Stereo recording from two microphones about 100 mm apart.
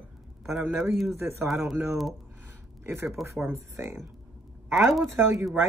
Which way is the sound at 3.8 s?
25° right (ahead or behind).